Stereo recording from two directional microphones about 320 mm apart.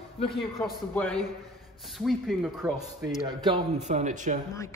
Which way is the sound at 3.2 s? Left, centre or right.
Centre.